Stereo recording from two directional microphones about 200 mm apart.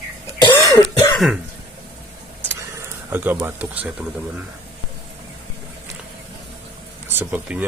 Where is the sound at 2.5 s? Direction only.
15° right (ahead or behind).